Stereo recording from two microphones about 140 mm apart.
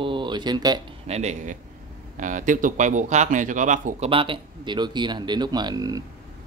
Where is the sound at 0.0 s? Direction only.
35° right (ahead or behind).